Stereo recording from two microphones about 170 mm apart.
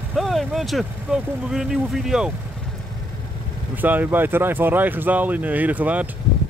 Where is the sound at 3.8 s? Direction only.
10° right (ahead or behind).